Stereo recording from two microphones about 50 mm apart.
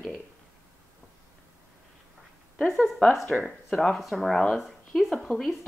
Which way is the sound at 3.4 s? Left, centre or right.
Centre.